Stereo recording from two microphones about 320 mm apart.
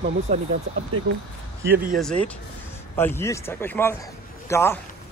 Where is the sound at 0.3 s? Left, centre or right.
Centre.